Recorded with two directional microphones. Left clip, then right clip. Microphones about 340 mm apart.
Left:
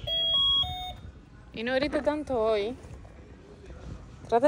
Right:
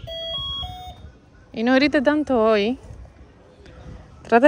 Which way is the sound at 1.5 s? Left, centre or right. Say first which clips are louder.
Right 10 dB; right.